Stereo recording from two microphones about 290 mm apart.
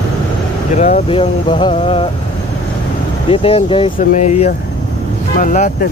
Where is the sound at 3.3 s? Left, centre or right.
Centre.